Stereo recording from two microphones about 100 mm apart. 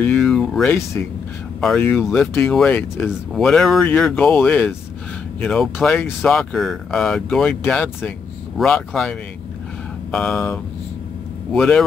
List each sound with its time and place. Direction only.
0.2 s a sound: 5° left (ahead or behind)
1.0 s speech: 20° left (ahead or behind)
8.5 s speech: 5° left (ahead or behind)
10.1 s speech: 15° left (ahead or behind)